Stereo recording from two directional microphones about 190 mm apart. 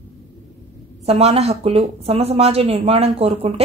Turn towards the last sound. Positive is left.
turn(degrees=-30)  # may be behind; listen again after turning